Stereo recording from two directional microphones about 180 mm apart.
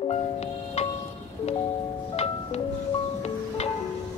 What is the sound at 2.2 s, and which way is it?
Music, 35° left (ahead or behind).